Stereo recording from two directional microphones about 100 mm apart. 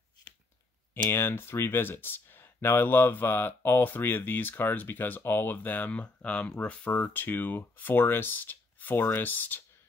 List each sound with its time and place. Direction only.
1.1 s speech: 25° left (ahead or behind)